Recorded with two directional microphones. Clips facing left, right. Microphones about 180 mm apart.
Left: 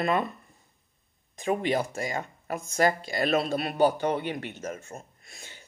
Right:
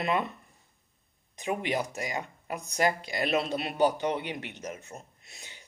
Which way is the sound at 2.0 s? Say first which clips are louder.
Left 3 dB; 50° left (ahead or behind).